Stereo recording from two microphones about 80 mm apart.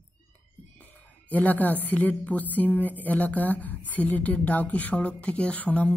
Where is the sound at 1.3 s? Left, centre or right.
Left.